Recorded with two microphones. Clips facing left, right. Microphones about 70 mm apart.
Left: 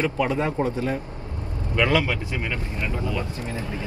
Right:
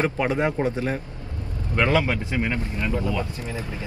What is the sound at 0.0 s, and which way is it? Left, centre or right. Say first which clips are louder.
Speech: right 1 dB; right.